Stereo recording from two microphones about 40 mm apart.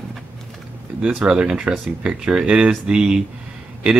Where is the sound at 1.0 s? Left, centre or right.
Right.